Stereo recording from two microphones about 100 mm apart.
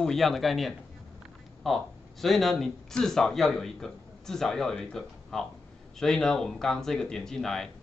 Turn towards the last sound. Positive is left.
turn(degrees=5)  # may be behind; listen again after turning